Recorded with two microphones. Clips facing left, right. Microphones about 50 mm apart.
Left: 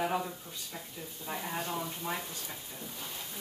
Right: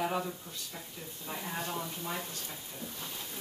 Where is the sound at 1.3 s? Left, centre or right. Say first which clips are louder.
Left 1 dB; centre.